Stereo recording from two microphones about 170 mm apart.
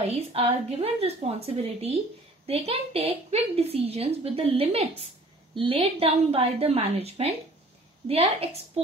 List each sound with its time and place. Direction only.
0.0 s a woman's voice: 35° right (ahead or behind)